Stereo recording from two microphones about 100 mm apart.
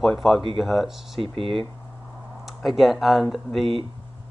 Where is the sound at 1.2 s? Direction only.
65° right (ahead or behind).